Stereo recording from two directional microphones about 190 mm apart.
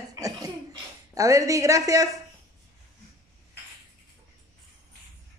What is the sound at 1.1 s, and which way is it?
Speech, 15° right (ahead or behind).